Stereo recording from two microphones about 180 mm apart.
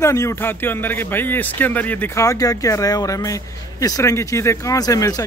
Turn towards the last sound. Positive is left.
turn(degrees=20)  # may be behind; listen again after turning